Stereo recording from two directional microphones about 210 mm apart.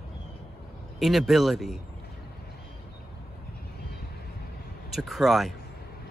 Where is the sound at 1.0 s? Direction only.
Centre (ahead or behind).